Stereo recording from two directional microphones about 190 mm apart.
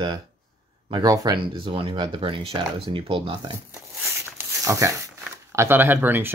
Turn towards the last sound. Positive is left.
turn(degrees=-10)  # may be behind; listen again after turning